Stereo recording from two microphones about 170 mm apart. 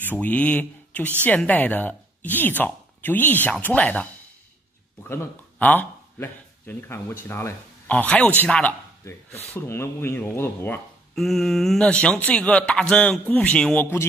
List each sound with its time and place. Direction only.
0.0 s speech: 10° left (ahead or behind)
11.1 s speech: centre (ahead or behind)